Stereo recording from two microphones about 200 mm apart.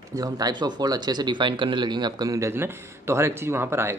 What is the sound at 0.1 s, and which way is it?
Speech, 20° right (ahead or behind).